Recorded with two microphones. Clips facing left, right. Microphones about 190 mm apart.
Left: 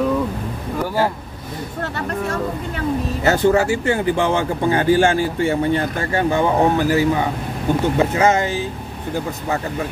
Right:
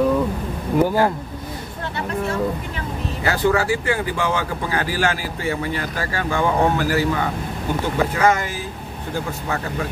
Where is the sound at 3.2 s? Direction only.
25° left (ahead or behind).